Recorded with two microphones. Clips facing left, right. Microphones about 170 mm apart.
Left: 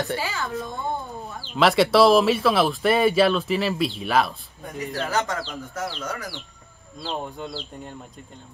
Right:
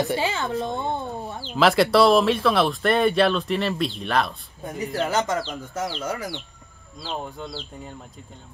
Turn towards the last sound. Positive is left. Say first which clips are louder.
# left 1 dB
turn(degrees=0)  # may be behind; listen again after turning